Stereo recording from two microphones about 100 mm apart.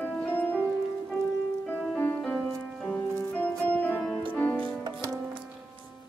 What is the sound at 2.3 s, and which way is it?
Music, centre (ahead or behind).